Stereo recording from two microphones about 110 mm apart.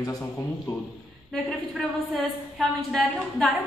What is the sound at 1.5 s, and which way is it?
A woman's voice, centre (ahead or behind).